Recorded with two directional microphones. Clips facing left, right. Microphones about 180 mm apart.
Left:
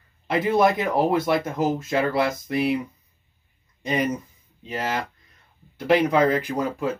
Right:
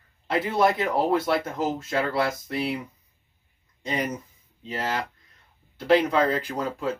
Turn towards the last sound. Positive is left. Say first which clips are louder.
# left 4 dB
turn(degrees=15)  # may be behind; listen again after turning